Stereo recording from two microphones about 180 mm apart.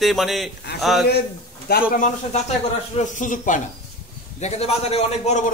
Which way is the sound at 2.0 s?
40° left (ahead or behind).